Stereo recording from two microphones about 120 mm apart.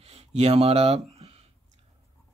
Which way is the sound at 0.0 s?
60° right (ahead or behind).